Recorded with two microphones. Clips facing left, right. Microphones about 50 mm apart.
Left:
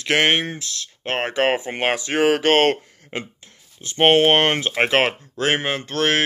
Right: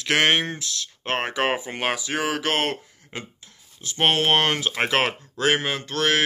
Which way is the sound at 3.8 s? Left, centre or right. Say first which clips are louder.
Left 6 dB; left.